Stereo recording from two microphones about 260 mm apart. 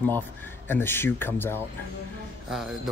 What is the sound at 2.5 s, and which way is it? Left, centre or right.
Speech, centre.